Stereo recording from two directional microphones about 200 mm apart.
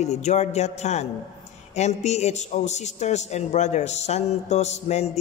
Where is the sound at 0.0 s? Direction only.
35° left (ahead or behind).